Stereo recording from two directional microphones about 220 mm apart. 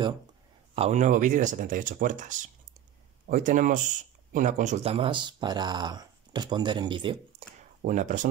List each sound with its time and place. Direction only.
0.7 s speech: 30° right (ahead or behind)
7.8 s speech: 35° right (ahead or behind)